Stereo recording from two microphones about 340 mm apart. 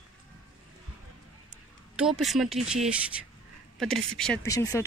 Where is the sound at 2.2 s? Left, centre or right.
Centre.